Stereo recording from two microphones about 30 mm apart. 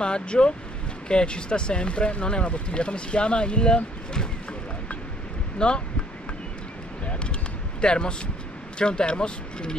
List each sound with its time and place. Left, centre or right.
0.0 s speech: left
5.6 s speech: left
7.8 s speech: left